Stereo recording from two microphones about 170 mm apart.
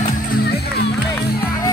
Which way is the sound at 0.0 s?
60° left (ahead or behind).